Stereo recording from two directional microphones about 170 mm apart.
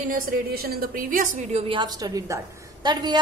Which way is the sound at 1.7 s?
25° right (ahead or behind).